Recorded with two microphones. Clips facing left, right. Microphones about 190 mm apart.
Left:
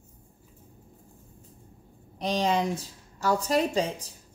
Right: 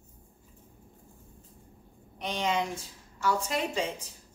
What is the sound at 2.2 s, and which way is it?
Speech, 35° left (ahead or behind).